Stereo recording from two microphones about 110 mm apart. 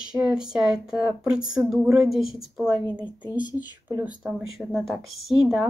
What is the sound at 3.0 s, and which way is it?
Speech, 45° left (ahead or behind).